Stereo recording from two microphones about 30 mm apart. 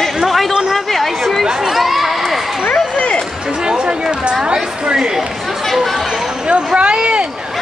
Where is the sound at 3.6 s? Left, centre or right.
Right.